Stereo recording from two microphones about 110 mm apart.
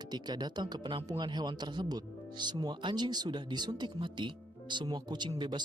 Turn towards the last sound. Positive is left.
turn(degrees=-45)  # may be behind; listen again after turning